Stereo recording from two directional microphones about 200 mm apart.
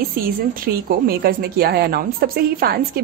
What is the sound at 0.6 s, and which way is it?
A woman's voice, 50° right (ahead or behind).